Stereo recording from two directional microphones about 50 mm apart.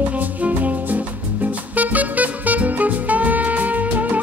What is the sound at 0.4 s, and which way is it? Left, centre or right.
Music, right.